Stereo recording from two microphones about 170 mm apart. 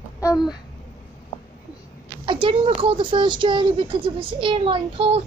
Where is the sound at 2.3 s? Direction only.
30° right (ahead or behind).